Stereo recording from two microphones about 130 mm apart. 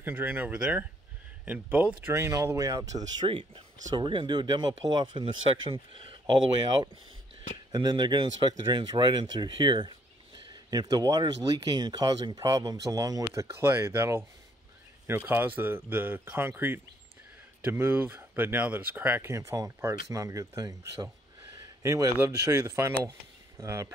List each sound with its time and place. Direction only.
0.0 s speech: 15° right (ahead or behind)
3.3 s speech: 40° right (ahead or behind); by 23.9 s 25° right (ahead or behind)